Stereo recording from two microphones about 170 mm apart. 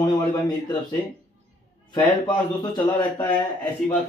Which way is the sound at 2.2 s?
25° left (ahead or behind).